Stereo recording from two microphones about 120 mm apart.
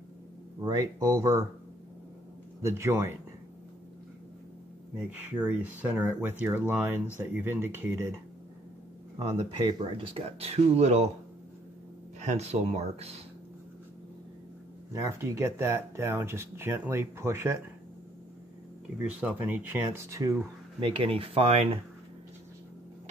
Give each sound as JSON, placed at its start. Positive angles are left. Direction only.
{"t": 0.6, "sound": "speech", "side_deg": -30}
{"t": 2.6, "sound": "speech", "side_deg": -20}
{"t": 5.1, "sound": "speech", "side_deg": -15}
{"t": 9.4, "sound": "speech", "side_deg": -45}
{"t": 12.2, "sound": "speech", "side_deg": -65}
{"t": 14.9, "sound": "speech", "side_deg": -25}
{"t": 19.0, "sound": "speech", "side_deg": -10}
{"t": 20.8, "sound": "speech", "side_deg": -45}